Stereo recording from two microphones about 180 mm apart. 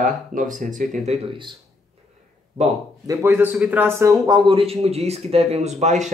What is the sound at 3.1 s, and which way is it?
Speech, 15° right (ahead or behind).